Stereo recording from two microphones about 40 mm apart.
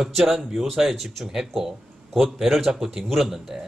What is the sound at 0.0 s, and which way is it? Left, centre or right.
Speech, centre.